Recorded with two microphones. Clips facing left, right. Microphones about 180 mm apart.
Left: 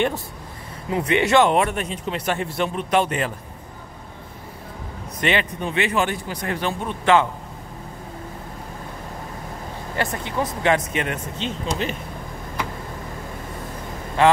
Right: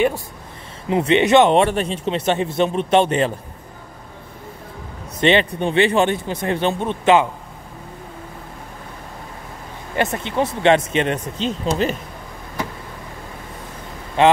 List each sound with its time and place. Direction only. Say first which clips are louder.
0.8 s speech: right 5 dB; 25° right (ahead or behind)
5.2 s speech: right 6 dB; 25° right (ahead or behind)
9.9 s speech: right 5 dB; 25° right (ahead or behind)
14.2 s speech: right 2 dB; 20° right (ahead or behind)